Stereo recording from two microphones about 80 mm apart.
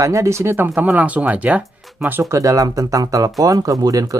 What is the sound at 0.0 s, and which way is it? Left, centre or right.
Speech, right.